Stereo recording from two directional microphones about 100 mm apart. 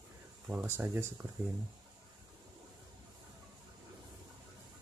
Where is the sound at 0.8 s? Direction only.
20° right (ahead or behind).